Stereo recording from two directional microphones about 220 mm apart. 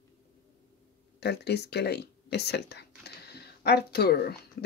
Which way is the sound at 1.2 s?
50° left (ahead or behind).